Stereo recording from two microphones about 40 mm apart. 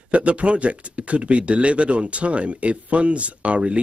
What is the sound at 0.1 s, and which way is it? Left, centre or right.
Speech, right.